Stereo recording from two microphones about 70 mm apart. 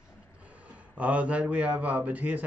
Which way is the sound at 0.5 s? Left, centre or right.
Centre.